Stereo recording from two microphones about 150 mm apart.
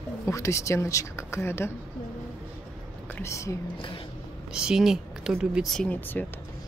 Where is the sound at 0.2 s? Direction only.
20° left (ahead or behind).